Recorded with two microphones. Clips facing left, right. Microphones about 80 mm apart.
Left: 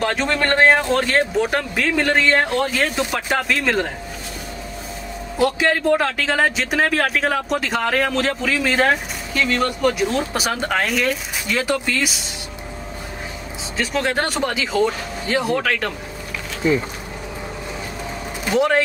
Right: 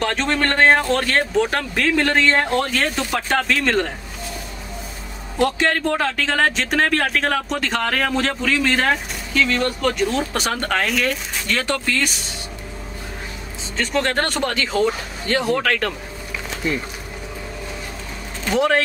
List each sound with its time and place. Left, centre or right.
0.0 s speech: centre
3.0 s speech: centre
5.4 s speech: centre
13.7 s speech: centre
18.4 s speech: centre